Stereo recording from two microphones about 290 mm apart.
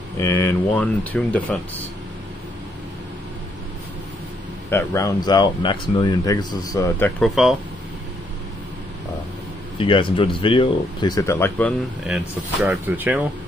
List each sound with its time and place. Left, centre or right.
0.2 s speech: centre
4.6 s speech: centre
9.8 s speech: centre
12.6 s speech: centre